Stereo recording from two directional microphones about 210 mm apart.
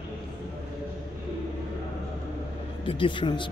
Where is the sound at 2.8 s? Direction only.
25° left (ahead or behind).